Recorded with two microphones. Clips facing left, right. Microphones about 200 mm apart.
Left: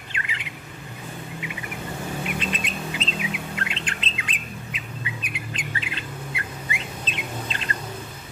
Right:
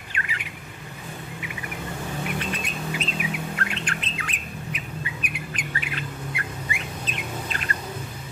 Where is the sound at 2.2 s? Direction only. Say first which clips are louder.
Even; 20° left (ahead or behind).